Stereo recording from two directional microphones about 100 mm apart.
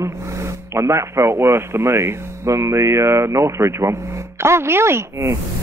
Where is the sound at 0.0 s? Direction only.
30° right (ahead or behind).